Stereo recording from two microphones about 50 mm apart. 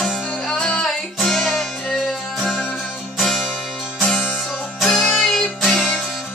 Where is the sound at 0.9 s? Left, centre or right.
Centre.